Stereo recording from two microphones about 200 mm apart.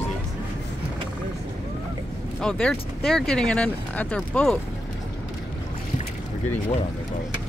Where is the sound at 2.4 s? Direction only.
5° left (ahead or behind).